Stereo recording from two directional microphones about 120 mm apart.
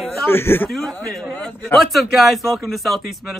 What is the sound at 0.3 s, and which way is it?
Speech, 20° left (ahead or behind).